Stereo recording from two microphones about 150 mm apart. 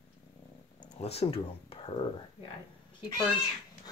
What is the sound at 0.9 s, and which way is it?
Speech, 45° left (ahead or behind).